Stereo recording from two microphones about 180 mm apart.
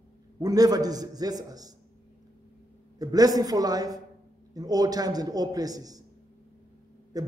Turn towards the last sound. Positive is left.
turn(degrees=-20)  # may be behind; listen again after turning